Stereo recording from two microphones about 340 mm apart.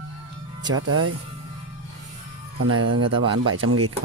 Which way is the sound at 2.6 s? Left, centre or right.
Right.